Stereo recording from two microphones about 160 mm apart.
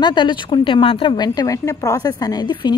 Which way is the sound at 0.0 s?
30° left (ahead or behind).